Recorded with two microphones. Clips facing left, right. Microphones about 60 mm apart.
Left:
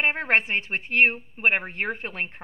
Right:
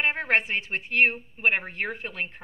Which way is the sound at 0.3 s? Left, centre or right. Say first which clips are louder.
Left 2 dB; left.